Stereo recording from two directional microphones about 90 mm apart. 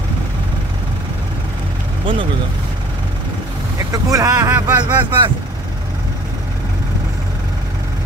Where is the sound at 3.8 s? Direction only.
40° right (ahead or behind); by 5.3 s 65° right (ahead or behind).